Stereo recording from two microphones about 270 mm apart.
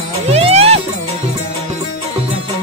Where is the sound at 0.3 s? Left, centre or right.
Right.